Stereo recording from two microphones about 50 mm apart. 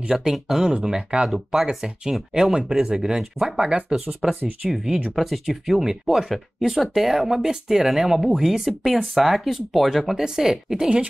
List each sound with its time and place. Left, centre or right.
0.1 s speech: centre
4.2 s speech: centre